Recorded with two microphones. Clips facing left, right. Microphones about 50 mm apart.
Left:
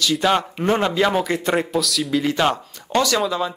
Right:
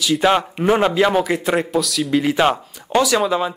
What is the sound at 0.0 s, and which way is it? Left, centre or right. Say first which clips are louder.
Speech: right 2 dB; centre.